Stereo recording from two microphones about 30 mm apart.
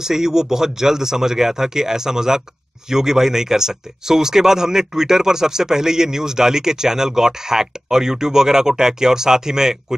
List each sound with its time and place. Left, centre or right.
0.0 s speech: centre